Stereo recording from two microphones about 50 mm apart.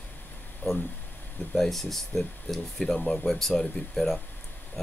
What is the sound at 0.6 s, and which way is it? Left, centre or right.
Speech, left.